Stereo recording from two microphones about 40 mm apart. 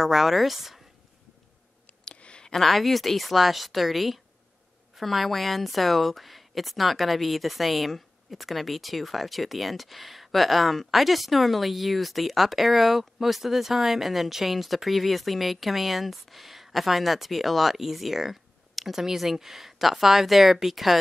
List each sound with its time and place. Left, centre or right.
0.0 s a woman's voice: centre
2.1 s a sound: left
2.5 s a woman's voice: centre